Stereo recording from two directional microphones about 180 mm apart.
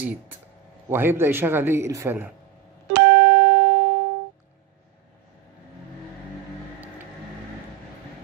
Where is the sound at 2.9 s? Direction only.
70° right (ahead or behind).